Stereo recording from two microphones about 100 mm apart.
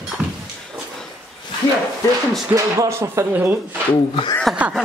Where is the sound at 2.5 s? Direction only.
30° right (ahead or behind).